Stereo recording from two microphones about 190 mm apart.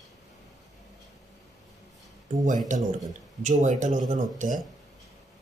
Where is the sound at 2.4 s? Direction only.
40° right (ahead or behind).